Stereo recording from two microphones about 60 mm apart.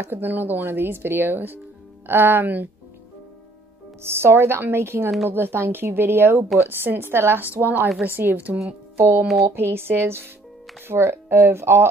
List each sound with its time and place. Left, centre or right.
0.0 s speech: right
4.0 s a woman's voice: right
8.9 s speech: right
9.2 s speech: centre
9.5 s a woman's voice: right